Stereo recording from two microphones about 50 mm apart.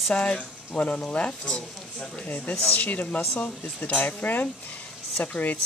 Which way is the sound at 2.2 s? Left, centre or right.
Left.